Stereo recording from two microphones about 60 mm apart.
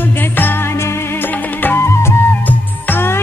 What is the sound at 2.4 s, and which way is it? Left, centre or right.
Music, left.